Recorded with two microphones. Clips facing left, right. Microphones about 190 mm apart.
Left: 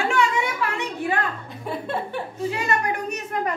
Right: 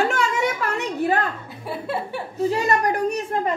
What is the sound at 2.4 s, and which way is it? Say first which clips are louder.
Speech: right 5 dB; 35° right (ahead or behind).